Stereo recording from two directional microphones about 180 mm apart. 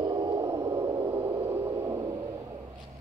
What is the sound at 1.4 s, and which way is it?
Radio, 15° right (ahead or behind).